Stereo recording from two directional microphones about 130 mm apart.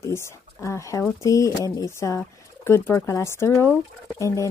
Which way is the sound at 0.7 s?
25° left (ahead or behind).